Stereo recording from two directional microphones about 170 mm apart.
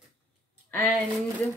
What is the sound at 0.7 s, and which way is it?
Speech, 10° left (ahead or behind).